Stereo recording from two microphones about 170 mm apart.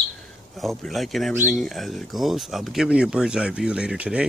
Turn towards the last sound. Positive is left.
turn(degrees=-5)  # may be behind; listen again after turning